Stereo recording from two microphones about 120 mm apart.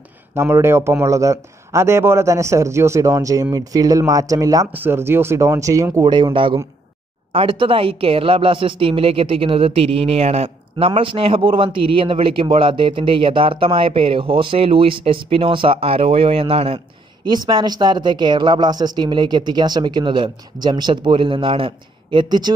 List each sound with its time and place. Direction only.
0.3 s speech: 20° right (ahead or behind)
4.7 s speech: 20° right (ahead or behind)
6.3 s speech: 45° right (ahead or behind)
17.3 s speech: 35° right (ahead or behind)